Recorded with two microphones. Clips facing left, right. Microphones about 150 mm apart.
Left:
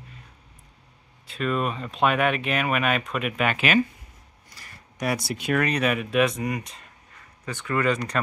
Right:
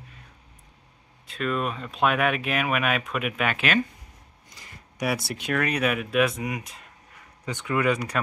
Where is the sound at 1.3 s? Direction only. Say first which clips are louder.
Left 1 dB; centre (ahead or behind).